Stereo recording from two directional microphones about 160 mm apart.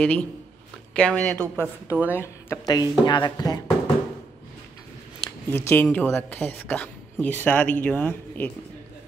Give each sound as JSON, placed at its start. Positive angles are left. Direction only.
{"t": 0.0, "sound": "a woman's voice", "side_deg": 10}
{"t": 1.9, "sound": "speech", "side_deg": -10}
{"t": 2.6, "sound": "speech", "side_deg": 25}
{"t": 5.5, "sound": "a woman's voice", "side_deg": 15}